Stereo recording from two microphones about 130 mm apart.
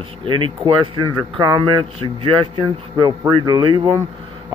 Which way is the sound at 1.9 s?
45° right (ahead or behind).